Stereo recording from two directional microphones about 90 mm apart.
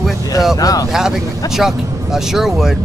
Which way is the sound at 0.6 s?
40° left (ahead or behind).